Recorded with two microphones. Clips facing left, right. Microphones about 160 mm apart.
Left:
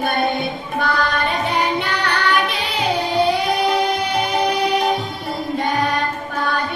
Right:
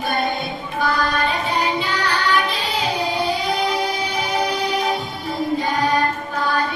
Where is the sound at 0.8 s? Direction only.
60° left (ahead or behind).